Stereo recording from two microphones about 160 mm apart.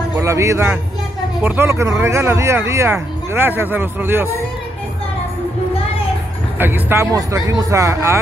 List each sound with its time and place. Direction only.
0.2 s speech: 20° right (ahead or behind)
6.6 s speech: 15° right (ahead or behind)